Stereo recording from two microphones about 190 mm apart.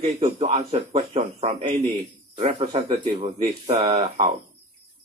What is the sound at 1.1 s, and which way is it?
Speech, 40° right (ahead or behind).